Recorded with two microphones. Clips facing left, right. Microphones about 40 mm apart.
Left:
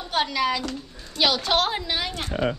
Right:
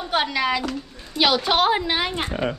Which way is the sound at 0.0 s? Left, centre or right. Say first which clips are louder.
Right 2 dB; centre.